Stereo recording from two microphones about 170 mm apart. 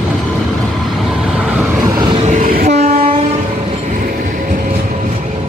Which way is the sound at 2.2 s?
50° right (ahead or behind).